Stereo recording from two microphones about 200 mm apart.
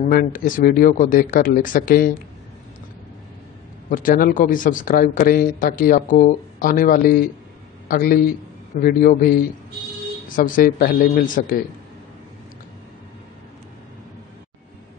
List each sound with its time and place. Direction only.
0.1 s a man's voice: 45° left (ahead or behind)
3.9 s a man's voice: 45° left (ahead or behind)